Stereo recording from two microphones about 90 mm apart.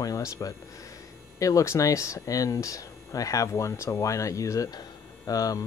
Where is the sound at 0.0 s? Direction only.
40° left (ahead or behind).